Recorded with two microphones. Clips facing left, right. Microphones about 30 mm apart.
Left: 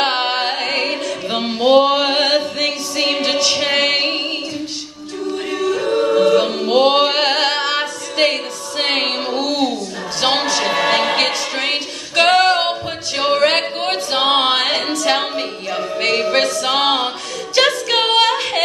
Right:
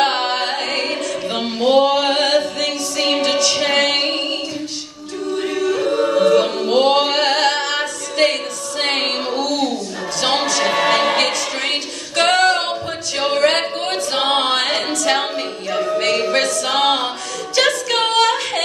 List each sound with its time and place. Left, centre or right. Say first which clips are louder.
0.0 s music: even; centre
3.2 s a capella: even; left
5.4 s choir: right 1 dB; centre
6.9 s music: left 1 dB; centre
9.4 s a sound: left 1 dB; left
10.2 s music: left 1 dB; centre
10.6 s a capella: even; centre
14.1 s singing: left 2 dB; centre
14.9 s music: left 1 dB; centre
17.6 s female singing: left 2 dB; centre